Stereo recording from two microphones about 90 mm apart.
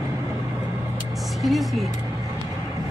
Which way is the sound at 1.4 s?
Centre (ahead or behind).